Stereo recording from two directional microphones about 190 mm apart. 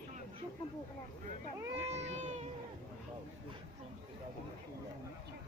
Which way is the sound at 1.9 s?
35° right (ahead or behind).